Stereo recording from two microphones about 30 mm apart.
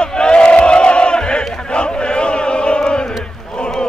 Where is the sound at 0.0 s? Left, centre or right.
Left.